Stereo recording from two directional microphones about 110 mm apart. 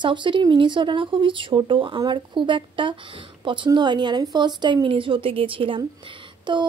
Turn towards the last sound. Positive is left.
turn(degrees=-45)  # may be behind; listen again after turning